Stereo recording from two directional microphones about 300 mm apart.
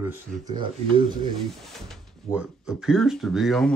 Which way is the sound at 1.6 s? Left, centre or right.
Centre.